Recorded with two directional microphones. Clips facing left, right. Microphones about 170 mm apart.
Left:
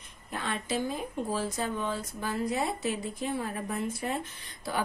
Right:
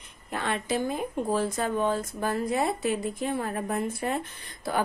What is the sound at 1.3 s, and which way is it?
A woman's voice, 55° right (ahead or behind).